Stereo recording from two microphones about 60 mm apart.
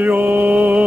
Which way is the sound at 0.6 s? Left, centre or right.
Right.